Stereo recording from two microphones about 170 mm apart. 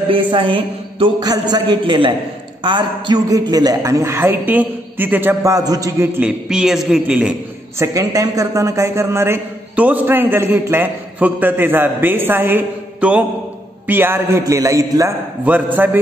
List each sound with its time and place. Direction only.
0.1 s a man's voice: 30° right (ahead or behind); by 7.3 s 5° right (ahead or behind)
7.8 s a man's voice: 20° right (ahead or behind)